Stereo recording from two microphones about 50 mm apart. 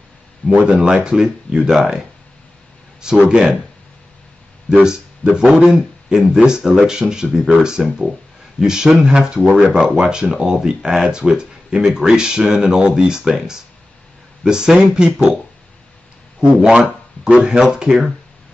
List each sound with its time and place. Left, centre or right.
0.5 s speech: right
1.7 s speech: centre
3.3 s speech: centre
4.6 s speech: centre
16.3 s speech: centre